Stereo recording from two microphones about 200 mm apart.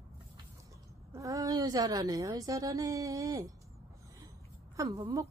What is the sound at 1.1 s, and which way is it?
Speech, 15° right (ahead or behind).